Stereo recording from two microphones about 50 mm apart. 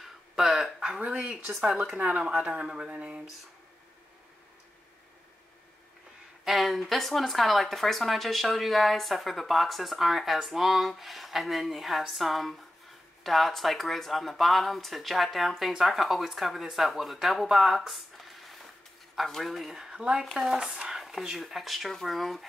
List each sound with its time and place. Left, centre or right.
0.0 s dog: centre
0.7 s speech: centre
2.0 s speech: right
2.2 s speech: centre
6.4 s speech: centre
19.9 s speech: centre
21.0 s a sound: centre
21.4 s speech: centre